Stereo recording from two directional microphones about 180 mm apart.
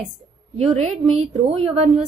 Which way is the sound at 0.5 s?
35° right (ahead or behind).